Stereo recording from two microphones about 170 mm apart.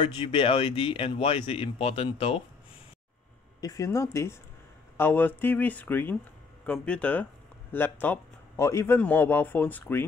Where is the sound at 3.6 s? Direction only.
20° left (ahead or behind).